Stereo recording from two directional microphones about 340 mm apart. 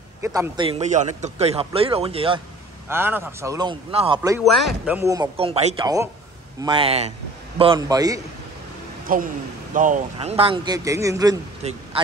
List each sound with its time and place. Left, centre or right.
0.2 s a man's voice: centre
4.5 s a man's voice: centre
9.0 s a man's voice: right